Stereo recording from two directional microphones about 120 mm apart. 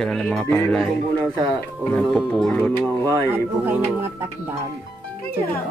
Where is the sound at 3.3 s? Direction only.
20° right (ahead or behind).